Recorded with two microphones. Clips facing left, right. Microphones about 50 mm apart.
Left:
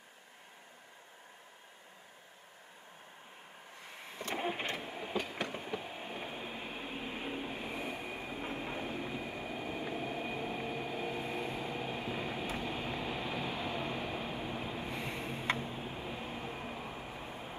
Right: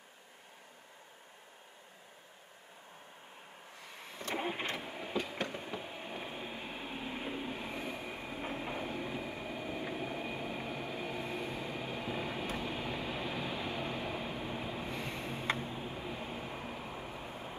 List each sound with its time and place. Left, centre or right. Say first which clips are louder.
4.4 s vehicle: left 1 dB; centre
4.7 s train: even; centre
10.0 s train: left 1 dB; centre
12.5 s vehicle: even; centre
13.0 s train: left 1 dB; centre
14.2 s train: even; centre
14.9 s a sound: even; left
15.5 s a sound: even; centre